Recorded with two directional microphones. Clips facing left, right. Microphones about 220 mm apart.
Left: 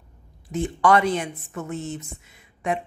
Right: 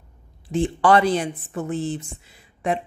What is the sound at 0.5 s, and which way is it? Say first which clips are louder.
Speech: right 2 dB; 30° right (ahead or behind).